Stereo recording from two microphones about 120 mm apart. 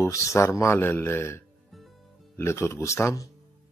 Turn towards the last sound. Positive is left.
turn(degrees=25)  # may be behind; listen again after turning